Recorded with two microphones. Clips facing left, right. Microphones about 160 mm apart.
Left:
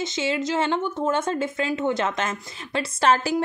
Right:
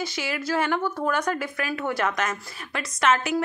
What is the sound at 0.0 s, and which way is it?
Speech, 25° left (ahead or behind).